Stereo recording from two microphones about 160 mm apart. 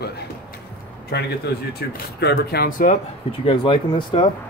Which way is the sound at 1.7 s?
75° left (ahead or behind).